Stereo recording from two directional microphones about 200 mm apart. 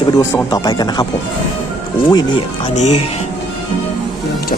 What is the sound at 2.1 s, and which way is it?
Speech, 25° left (ahead or behind).